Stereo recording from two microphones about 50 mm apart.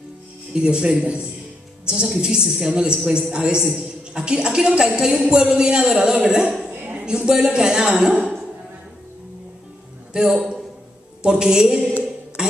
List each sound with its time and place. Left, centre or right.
0.6 s a man's voice: centre
10.1 s a man's voice: centre
12.4 s a sound: centre